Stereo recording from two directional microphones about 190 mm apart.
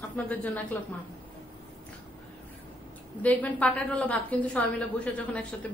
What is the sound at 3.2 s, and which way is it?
A woman's voice, 5° left (ahead or behind).